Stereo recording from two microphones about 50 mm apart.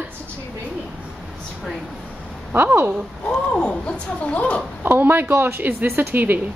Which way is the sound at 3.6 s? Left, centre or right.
Centre.